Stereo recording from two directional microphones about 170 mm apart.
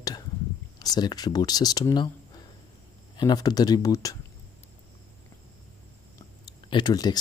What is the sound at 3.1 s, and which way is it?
Speech, 25° left (ahead or behind).